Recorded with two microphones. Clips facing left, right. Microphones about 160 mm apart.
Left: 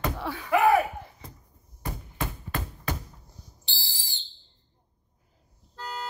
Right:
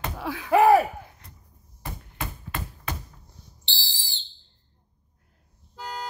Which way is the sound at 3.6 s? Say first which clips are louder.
Right 5 dB; 30° right (ahead or behind).